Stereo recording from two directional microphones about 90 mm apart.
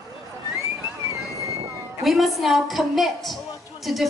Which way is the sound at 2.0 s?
Centre (ahead or behind).